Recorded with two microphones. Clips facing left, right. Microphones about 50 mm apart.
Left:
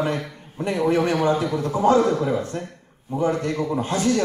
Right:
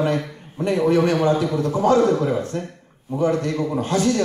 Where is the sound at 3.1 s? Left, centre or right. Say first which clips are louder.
Right 2 dB; left.